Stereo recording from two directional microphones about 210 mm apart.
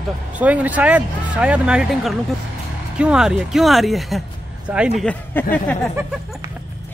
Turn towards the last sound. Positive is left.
turn(degrees=10)  # may be behind; listen again after turning